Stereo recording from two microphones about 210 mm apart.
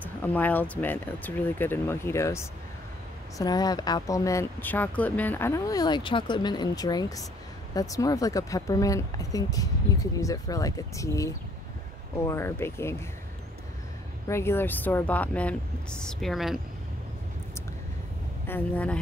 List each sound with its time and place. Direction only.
0.0 s speech: 10° left (ahead or behind)
14.2 s speech: 10° left (ahead or behind)
18.5 s speech: 5° left (ahead or behind)